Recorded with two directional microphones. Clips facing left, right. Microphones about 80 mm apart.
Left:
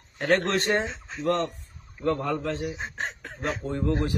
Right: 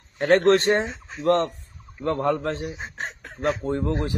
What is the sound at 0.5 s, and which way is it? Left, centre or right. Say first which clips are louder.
Speech: right 7 dB; right.